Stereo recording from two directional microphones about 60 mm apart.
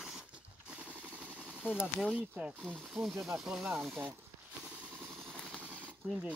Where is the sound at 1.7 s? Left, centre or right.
Centre.